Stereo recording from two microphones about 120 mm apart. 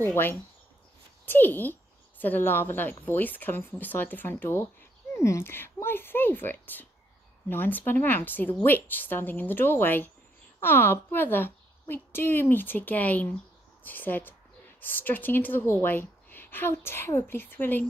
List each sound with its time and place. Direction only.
0.0 s a woman's voice: 20° left (ahead or behind)